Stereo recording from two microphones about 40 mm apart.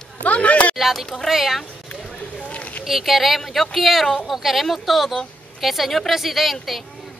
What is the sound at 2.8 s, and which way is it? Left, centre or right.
A woman's voice, centre.